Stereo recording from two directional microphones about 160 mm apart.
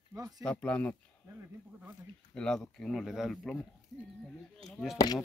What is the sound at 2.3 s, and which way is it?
Speech, 5° left (ahead or behind).